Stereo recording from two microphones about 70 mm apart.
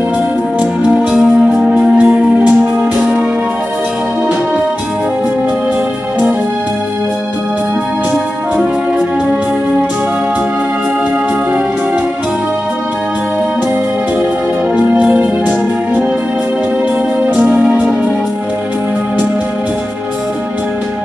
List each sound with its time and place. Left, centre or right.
0.8 s music: centre
14.9 s music: right
17.2 s music: right